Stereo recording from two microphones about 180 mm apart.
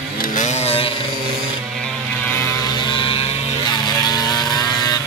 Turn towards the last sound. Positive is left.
turn(degrees=20)  # may be behind; listen again after turning